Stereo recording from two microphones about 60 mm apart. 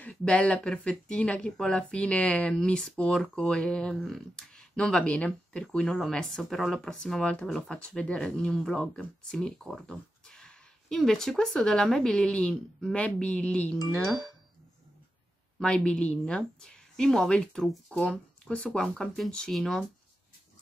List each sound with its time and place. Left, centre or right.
0.1 s speech: centre
7.7 s speech: centre
9.8 s dog: centre
11.0 s speech: centre
14.0 s speech: centre
15.6 s speech: centre
18.8 s speech: centre